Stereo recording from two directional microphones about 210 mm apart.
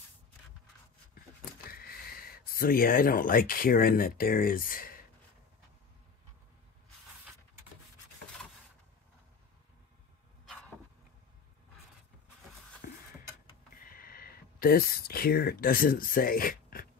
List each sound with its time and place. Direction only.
1.7 s speech: 45° left (ahead or behind)
12.8 s a sound: 45° left (ahead or behind)
13.7 s speech: 45° left (ahead or behind)